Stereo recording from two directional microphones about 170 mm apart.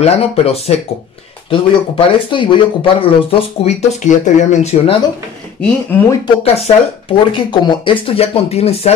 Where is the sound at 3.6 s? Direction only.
40° left (ahead or behind).